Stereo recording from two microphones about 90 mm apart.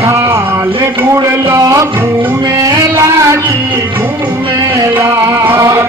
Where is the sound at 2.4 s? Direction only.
40° right (ahead or behind).